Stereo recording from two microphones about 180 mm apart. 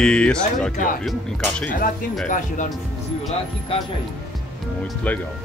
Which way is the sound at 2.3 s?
45° left (ahead or behind).